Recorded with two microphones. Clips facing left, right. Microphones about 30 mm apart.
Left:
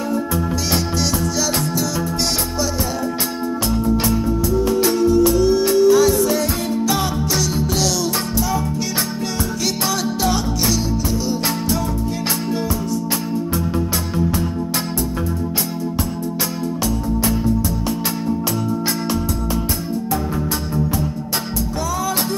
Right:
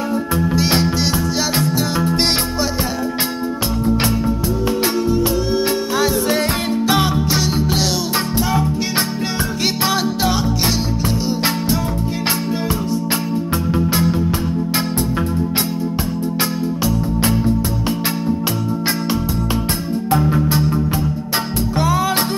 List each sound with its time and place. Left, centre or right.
0.1 s music: right
3.8 s music: right
9.8 s music: right
20.1 s music: right
21.7 s music: right